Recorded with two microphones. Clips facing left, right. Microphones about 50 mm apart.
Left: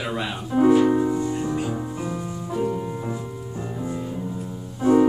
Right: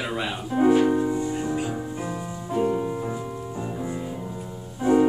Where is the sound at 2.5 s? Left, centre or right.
Right.